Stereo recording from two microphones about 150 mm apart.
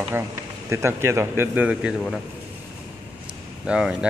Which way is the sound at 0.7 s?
20° right (ahead or behind).